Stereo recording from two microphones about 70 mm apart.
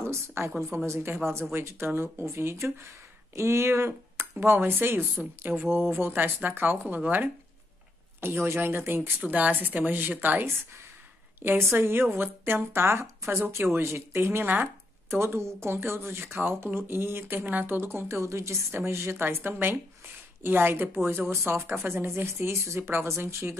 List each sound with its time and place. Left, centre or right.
0.0 s speech: right